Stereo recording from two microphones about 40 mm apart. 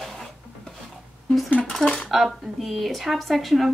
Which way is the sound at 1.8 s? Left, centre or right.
Left.